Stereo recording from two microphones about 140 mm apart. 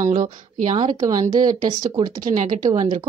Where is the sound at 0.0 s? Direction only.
60° right (ahead or behind).